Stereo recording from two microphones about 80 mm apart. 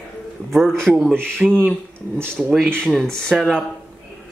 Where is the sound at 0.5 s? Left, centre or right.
Centre.